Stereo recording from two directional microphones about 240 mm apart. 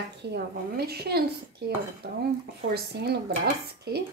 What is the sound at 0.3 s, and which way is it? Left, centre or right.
Speech, right.